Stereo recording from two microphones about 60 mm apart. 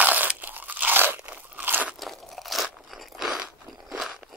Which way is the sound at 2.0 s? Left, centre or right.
Centre.